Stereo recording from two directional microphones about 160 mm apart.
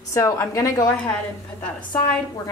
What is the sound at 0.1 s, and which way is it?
Speech, 20° left (ahead or behind).